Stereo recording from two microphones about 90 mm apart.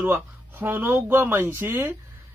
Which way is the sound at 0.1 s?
25° right (ahead or behind).